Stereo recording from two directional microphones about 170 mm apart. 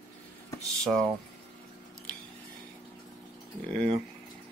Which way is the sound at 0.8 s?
5° left (ahead or behind).